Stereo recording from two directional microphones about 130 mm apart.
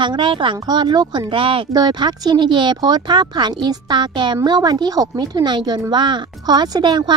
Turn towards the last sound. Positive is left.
turn(degrees=-35)  # may be behind; listen again after turning